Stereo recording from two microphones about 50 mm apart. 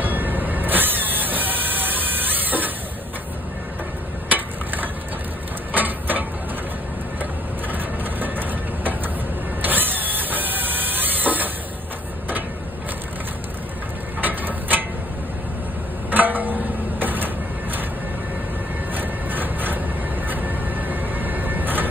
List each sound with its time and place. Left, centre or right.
0.0 s train: right
5.7 s a sound: right
8.0 s train: right
9.6 s a sound: right
14.2 s mechanisms: right
16.1 s music: right
17.0 s vehicle: right
18.9 s music: right
20.2 s train: right